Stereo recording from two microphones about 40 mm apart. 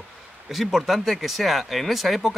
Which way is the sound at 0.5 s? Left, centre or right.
Centre.